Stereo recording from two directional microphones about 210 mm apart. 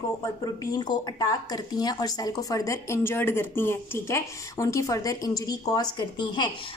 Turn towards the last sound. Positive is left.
turn(degrees=20)  # may be behind; listen again after turning